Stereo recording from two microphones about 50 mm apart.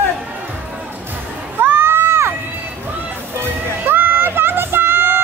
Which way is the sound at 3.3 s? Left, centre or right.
Right.